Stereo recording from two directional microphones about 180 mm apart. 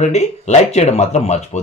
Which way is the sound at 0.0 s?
40° left (ahead or behind).